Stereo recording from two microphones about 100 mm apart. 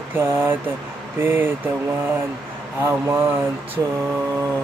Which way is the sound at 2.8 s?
20° right (ahead or behind).